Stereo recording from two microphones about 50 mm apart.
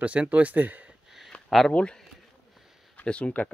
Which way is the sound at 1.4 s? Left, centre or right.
Centre.